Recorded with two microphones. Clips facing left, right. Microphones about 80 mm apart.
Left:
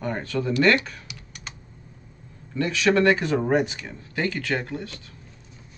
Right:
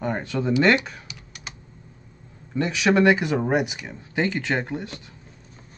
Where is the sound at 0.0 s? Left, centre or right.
Centre.